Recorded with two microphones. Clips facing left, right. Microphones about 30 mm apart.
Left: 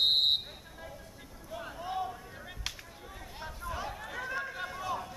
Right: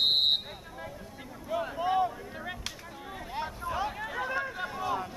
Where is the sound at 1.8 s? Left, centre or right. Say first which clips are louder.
Right 8 dB; right.